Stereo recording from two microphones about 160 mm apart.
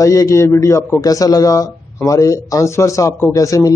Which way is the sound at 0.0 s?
20° left (ahead or behind).